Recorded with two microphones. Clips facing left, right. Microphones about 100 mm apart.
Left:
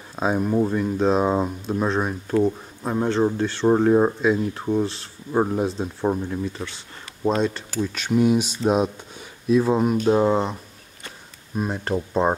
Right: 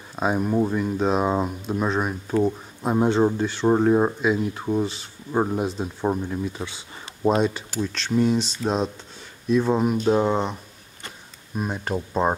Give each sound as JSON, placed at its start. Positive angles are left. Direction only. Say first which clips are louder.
{"t": 0.1, "sound": "speech", "louder": "left 1 dB", "side_deg": -5}
{"t": 2.8, "sound": "speech", "louder": "right 2 dB", "side_deg": -15}
{"t": 3.3, "sound": "speech", "louder": "left 1 dB", "side_deg": 0}
{"t": 7.9, "sound": "speech", "louder": "left 2 dB", "side_deg": 10}